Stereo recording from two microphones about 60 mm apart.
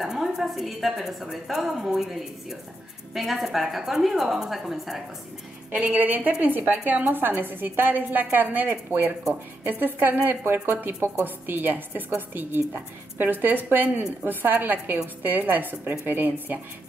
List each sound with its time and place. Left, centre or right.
0.0 s a woman's voice: centre
3.2 s a woman's voice: centre
5.7 s a woman's voice: right